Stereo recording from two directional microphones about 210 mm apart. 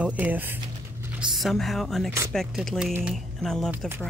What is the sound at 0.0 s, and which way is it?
Speech, 5° right (ahead or behind).